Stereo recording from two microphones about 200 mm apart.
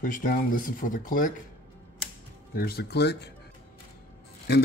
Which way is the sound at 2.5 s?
50° left (ahead or behind).